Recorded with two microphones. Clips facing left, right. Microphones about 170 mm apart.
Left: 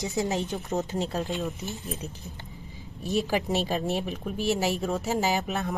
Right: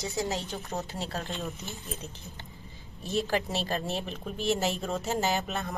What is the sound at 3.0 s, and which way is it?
Speech, 15° left (ahead or behind).